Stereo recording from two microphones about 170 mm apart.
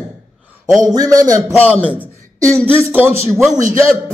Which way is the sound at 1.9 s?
15° right (ahead or behind).